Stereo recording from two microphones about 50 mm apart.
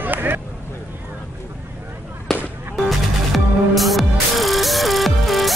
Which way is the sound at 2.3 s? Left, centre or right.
Centre.